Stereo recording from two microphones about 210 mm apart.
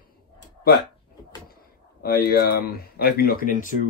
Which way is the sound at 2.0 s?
45° left (ahead or behind).